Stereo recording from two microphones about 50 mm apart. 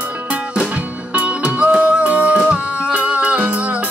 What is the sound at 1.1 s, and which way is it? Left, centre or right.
Music, right.